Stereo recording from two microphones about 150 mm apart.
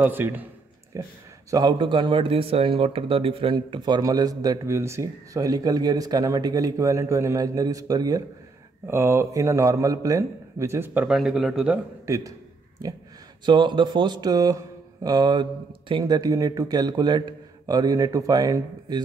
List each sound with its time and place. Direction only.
0.0 s a man's voice: 15° right (ahead or behind)
11.1 s speech: centre (ahead or behind)
12.1 s a sound: 20° right (ahead or behind)
13.5 s speech: 30° right (ahead or behind)